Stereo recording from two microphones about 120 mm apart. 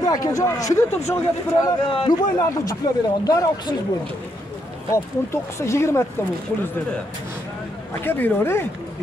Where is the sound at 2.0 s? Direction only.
35° left (ahead or behind).